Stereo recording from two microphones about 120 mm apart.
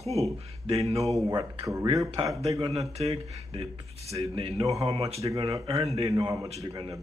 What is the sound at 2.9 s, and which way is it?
Speech, 55° right (ahead or behind).